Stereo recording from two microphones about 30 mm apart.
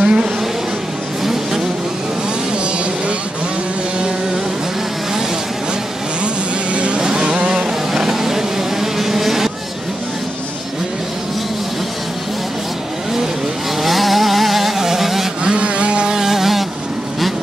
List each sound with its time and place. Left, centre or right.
0.0 s a sound: right
1.2 s vehicle: centre
6.2 s vehicle: right
7.0 s vehicle: right
7.9 s vehicle: centre
13.8 s vehicle: centre
15.4 s vehicle: right
16.2 s vehicle: centre